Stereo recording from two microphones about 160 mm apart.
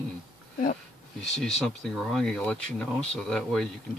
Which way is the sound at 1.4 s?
5° left (ahead or behind).